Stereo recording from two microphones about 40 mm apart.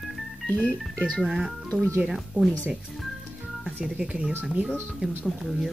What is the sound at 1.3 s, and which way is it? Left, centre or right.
Speech, centre.